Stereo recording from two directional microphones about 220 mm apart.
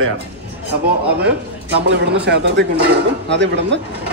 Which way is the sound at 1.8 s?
55° right (ahead or behind).